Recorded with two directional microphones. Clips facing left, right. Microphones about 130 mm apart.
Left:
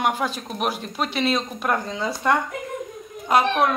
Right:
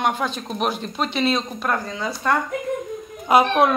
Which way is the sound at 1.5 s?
15° left (ahead or behind).